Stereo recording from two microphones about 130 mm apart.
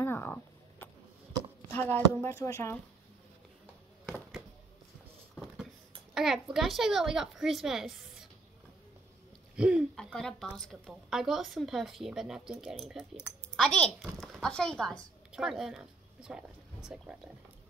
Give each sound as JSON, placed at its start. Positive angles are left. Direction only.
{"t": 0.0, "sound": "a sound", "side_deg": 15}
{"t": 1.7, "sound": "speech", "side_deg": 15}
{"t": 4.0, "sound": "a sound", "side_deg": 0}
{"t": 6.1, "sound": "speech", "side_deg": -5}
{"t": 9.6, "sound": "speech", "side_deg": -5}
{"t": 10.1, "sound": "speech", "side_deg": 5}